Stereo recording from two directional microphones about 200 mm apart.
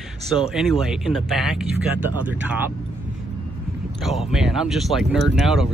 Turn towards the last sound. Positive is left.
turn(degrees=0)  # may be behind; listen again after turning